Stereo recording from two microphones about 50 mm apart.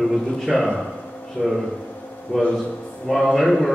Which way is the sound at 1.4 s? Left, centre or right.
Right.